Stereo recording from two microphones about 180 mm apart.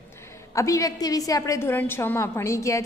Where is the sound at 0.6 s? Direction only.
15° left (ahead or behind).